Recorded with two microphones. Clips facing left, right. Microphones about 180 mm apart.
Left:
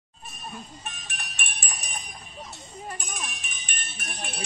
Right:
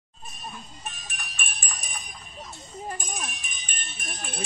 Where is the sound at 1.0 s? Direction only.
65° left (ahead or behind).